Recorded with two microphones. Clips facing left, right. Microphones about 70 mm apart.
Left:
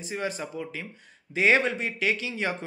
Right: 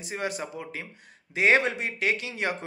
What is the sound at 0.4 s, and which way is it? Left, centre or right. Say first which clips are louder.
Speech: left 1 dB; right.